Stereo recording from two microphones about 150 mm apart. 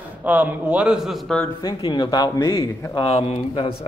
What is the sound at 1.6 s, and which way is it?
A man's voice, 30° left (ahead or behind).